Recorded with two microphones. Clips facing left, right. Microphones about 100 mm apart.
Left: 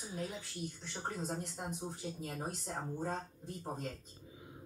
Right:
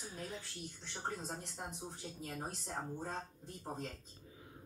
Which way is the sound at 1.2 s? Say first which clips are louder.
Left 5 dB; centre (ahead or behind).